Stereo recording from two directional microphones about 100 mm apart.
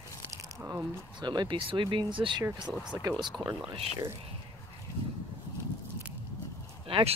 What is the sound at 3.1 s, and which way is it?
Speech, 40° right (ahead or behind).